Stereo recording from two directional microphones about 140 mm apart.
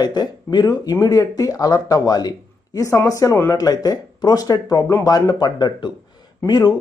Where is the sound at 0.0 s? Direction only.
30° left (ahead or behind).